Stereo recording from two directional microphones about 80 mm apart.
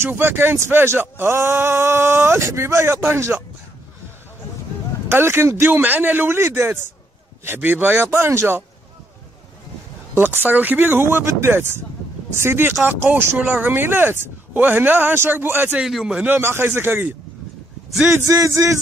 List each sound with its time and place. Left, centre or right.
0.0 s speech: right
5.0 s speech: right
10.1 s speech: right
13.4 s a man's voice: centre
15.8 s a man's voice: centre
16.3 s speech: right
18.1 s speech: right